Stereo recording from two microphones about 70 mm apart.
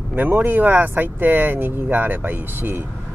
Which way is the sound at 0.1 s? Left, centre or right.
Right.